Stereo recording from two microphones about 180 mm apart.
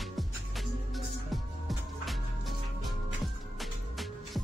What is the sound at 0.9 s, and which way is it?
Music, centre (ahead or behind).